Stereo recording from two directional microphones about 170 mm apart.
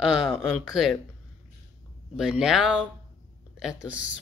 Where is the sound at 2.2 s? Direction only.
5° right (ahead or behind).